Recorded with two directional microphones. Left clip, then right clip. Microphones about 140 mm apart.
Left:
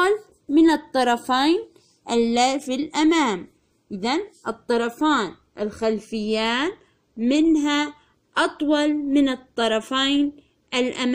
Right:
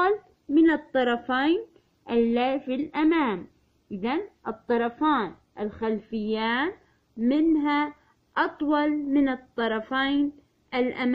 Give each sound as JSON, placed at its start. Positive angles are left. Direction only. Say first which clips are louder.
{"t": 0.0, "sound": "a woman's voice", "louder": "left 3 dB", "side_deg": 10}